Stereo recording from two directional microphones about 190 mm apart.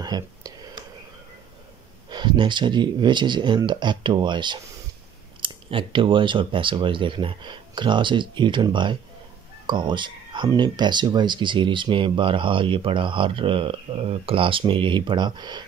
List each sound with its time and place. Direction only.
0.0 s whispering: 20° right (ahead or behind)
2.0 s speech: 25° right (ahead or behind)